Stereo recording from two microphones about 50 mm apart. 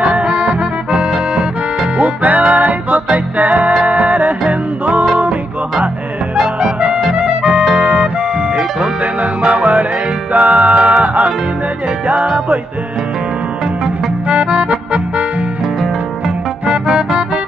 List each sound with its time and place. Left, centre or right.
0.0 s accordion: right
2.0 s music: right
6.6 s music: centre
7.0 s music: centre
7.2 s music: centre
9.5 s music: right
14.3 s accordion: centre
16.6 s music: centre